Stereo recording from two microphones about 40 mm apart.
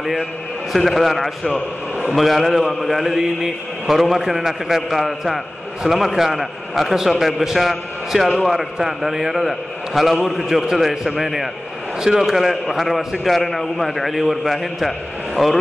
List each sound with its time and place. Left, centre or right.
0.7 s a man's voice: centre